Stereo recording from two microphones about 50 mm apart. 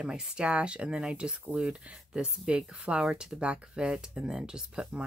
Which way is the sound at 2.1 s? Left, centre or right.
Centre.